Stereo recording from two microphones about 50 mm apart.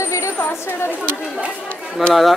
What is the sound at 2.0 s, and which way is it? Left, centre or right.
Speech, centre.